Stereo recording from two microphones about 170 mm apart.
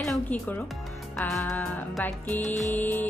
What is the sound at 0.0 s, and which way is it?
Music, 5° left (ahead or behind).